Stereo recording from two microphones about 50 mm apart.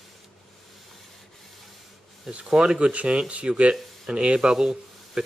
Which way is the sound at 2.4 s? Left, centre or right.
Centre.